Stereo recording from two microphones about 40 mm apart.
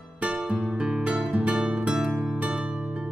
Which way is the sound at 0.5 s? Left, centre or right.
Right.